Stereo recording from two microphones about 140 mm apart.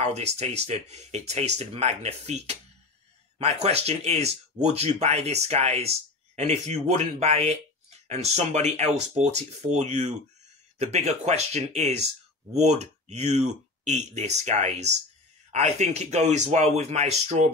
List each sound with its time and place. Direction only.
0.0 s speech: 50° right (ahead or behind)